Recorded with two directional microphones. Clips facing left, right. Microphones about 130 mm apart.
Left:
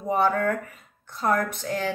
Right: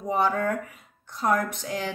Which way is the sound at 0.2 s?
15° right (ahead or behind).